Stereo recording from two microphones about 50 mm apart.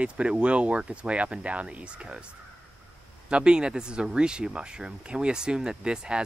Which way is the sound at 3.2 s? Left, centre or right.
Centre.